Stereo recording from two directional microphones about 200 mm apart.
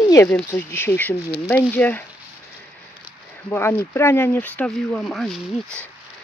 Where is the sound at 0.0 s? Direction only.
15° left (ahead or behind).